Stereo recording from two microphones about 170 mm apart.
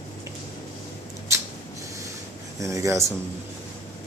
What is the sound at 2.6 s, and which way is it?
Speech, 20° right (ahead or behind).